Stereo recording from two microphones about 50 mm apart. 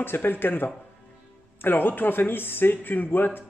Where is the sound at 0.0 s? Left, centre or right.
Left.